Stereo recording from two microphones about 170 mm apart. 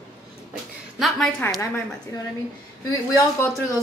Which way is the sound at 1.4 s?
15° left (ahead or behind).